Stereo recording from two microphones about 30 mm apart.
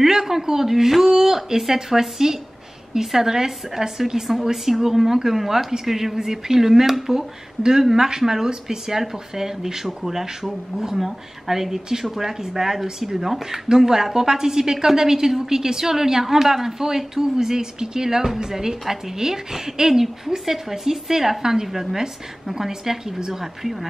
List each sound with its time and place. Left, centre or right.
0.0 s a woman's voice: centre
23.4 s a woman's voice: centre